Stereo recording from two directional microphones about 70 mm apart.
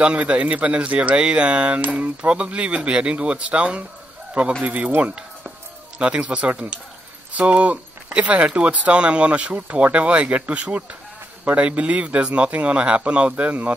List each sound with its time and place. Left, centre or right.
0.0 s speech: centre